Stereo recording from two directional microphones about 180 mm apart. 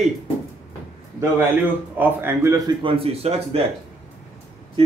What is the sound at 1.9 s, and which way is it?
Speech, 10° right (ahead or behind).